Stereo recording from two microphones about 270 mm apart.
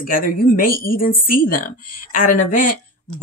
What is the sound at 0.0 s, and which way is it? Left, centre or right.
Speech, left.